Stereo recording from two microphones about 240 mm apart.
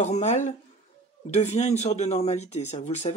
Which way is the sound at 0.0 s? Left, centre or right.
Left.